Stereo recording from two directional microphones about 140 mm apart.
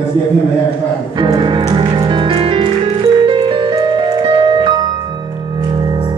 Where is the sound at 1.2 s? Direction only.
35° right (ahead or behind).